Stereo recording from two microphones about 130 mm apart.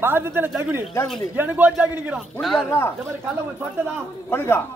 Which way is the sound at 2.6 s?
20° left (ahead or behind).